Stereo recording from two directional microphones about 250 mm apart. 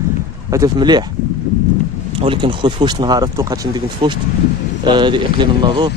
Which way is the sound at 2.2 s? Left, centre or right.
Right.